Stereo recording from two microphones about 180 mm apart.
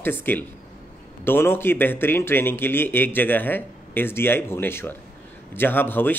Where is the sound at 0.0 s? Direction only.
10° left (ahead or behind).